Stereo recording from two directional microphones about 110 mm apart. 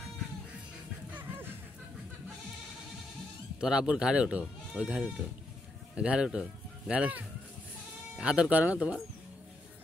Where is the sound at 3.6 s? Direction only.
5° right (ahead or behind).